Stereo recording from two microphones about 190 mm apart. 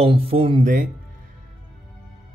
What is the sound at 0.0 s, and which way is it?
Speech, 30° right (ahead or behind).